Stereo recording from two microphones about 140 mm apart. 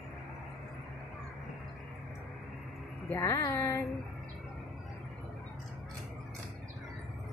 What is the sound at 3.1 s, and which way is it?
Speech, 20° left (ahead or behind).